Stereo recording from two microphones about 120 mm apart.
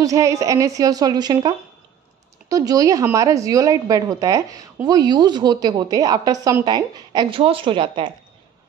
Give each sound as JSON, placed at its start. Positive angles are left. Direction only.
{"t": 0.0, "sound": "a woman's voice", "side_deg": -25}
{"t": 2.5, "sound": "a woman's voice", "side_deg": -30}